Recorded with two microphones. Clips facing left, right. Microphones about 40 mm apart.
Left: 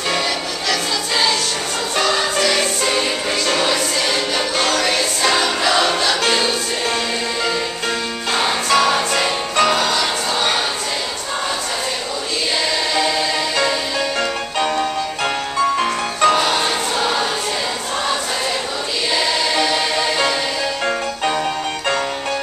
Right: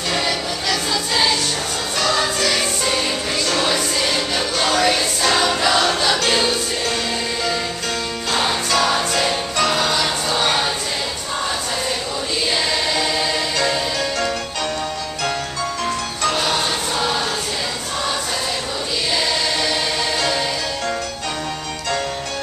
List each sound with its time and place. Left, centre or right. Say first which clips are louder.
0.7 s choir: left 1 dB; centre
2.4 s music: left 2 dB; centre
8.3 s music: left 3 dB; centre
13.6 s music: left 1 dB; centre
14.6 s music: left 5 dB; left
16.3 s music: left 4 dB; centre
19.1 s music: left 4 dB; centre